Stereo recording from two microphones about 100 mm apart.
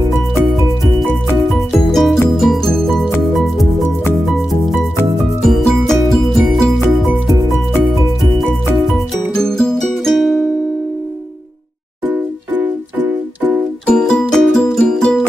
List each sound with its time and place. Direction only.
1.7 s music: 5° left (ahead or behind)
5.4 s music: 5° left (ahead or behind)
12.1 s music: 20° right (ahead or behind)
13.8 s music: 10° left (ahead or behind)